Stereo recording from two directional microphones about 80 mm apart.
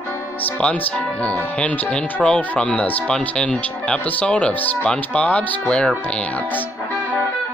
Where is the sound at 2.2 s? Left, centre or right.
Centre.